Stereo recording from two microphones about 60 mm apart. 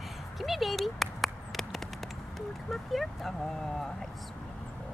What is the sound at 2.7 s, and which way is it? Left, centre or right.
Speech, centre.